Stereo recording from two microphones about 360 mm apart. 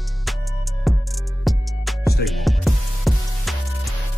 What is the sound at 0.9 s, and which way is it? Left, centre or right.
Music, centre.